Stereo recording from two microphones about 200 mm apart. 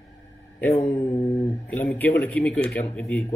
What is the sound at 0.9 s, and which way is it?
Mantra, 20° left (ahead or behind).